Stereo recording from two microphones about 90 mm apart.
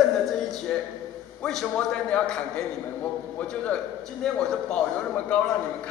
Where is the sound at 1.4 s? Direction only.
5° left (ahead or behind).